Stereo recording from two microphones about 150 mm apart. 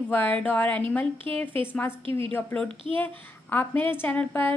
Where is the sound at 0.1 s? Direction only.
10° left (ahead or behind).